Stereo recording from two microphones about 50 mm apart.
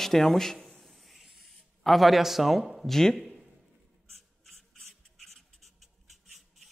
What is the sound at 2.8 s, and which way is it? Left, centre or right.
Speech, centre.